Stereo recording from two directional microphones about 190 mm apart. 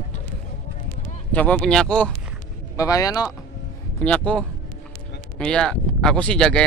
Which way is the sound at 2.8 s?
20° left (ahead or behind).